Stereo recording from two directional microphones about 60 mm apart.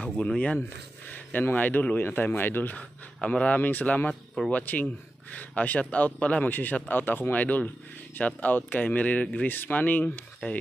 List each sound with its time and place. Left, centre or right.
0.0 s speech: centre
1.4 s speech: left
3.2 s speech: centre
9.5 s speech: left